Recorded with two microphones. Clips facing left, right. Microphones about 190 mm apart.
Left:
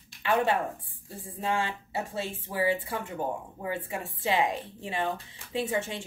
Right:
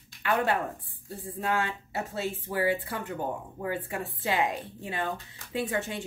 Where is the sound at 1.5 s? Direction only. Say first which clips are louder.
Even; 30° left (ahead or behind).